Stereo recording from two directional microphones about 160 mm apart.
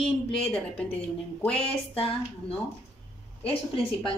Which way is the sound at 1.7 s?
35° left (ahead or behind).